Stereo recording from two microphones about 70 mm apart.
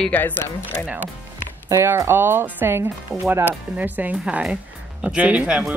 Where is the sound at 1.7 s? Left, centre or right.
Right; by 5.7 s centre.